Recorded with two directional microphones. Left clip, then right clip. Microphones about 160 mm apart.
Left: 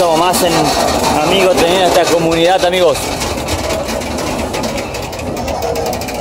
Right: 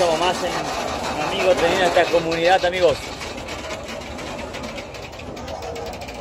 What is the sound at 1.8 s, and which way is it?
Speech, 35° left (ahead or behind).